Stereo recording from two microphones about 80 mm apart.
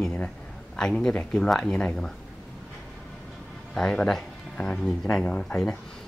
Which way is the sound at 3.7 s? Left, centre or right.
Centre.